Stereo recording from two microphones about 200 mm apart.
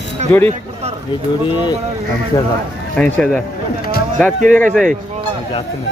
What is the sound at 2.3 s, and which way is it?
Speech, 20° left (ahead or behind).